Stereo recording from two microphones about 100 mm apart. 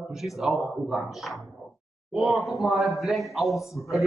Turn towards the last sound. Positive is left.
turn(degrees=0)  # may be behind; listen again after turning